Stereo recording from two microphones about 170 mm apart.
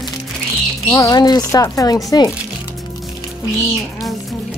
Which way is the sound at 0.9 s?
20° left (ahead or behind).